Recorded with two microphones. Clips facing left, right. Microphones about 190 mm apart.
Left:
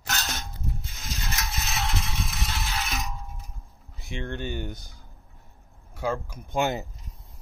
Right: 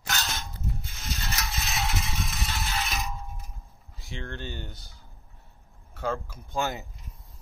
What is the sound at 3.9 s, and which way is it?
Speech, 20° left (ahead or behind).